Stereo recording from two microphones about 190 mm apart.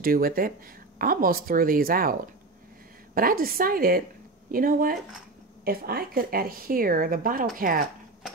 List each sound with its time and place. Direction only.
0.0 s speech: 50° right (ahead or behind)
3.2 s speech: 50° right (ahead or behind)